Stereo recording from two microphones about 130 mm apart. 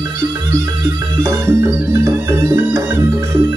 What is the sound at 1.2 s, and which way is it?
Music, 20° right (ahead or behind).